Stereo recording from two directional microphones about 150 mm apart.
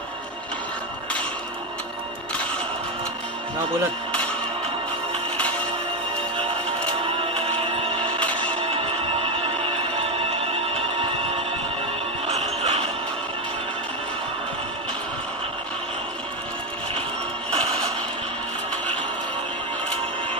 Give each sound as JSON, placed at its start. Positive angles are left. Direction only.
{"t": 7.2, "sound": "music", "side_deg": -40}
{"t": 9.2, "sound": "music", "side_deg": -40}
{"t": 12.3, "sound": "jingle bell", "side_deg": -45}